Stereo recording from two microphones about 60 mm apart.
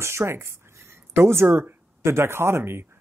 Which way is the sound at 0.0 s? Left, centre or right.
Right.